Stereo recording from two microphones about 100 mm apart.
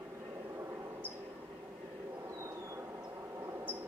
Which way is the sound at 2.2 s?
30° right (ahead or behind).